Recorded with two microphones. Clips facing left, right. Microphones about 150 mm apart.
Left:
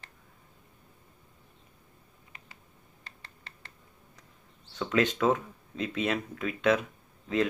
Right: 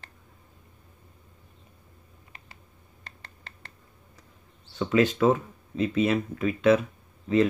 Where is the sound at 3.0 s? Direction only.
55° right (ahead or behind).